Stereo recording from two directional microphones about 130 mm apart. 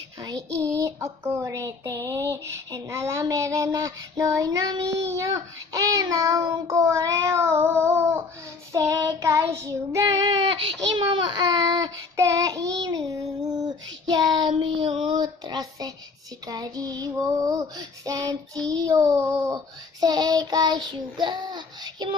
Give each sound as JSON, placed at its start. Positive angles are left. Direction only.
{"t": 0.2, "sound": "child singing", "side_deg": -25}
{"t": 0.7, "sound": "speech", "side_deg": -25}
{"t": 8.7, "sound": "child singing", "side_deg": -25}
{"t": 15.1, "sound": "a sound", "side_deg": -30}
{"t": 16.4, "sound": "speech", "side_deg": -30}